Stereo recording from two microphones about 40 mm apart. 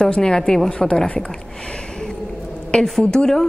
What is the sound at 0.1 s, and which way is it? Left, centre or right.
Speech, left.